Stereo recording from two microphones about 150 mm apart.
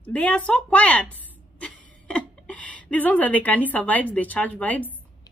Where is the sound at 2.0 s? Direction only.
5° left (ahead or behind).